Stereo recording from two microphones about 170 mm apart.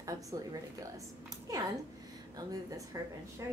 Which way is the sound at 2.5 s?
20° right (ahead or behind).